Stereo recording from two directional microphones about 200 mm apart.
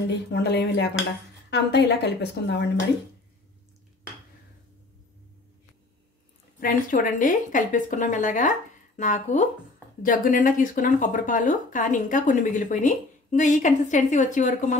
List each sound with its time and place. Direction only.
0.3 s a woman's voice: 55° left (ahead or behind)
6.6 s speech: 45° left (ahead or behind)